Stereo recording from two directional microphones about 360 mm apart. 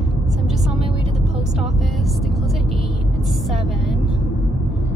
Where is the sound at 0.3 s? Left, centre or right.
Centre.